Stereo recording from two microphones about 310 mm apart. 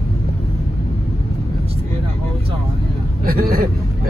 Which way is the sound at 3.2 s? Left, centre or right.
Right.